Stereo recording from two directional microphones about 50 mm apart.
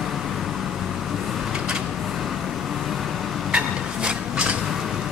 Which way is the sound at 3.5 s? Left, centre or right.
Right.